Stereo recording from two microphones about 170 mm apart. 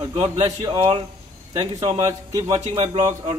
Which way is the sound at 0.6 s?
30° right (ahead or behind).